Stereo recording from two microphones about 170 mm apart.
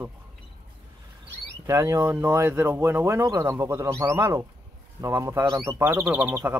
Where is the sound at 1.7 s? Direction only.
15° right (ahead or behind).